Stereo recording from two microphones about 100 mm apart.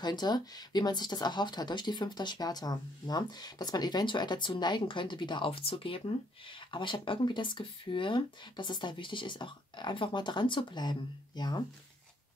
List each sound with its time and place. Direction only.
0.0 s speech: 45° left (ahead or behind)